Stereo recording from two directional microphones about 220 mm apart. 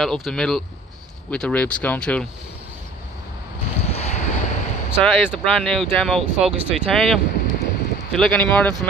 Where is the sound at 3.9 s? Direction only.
30° left (ahead or behind).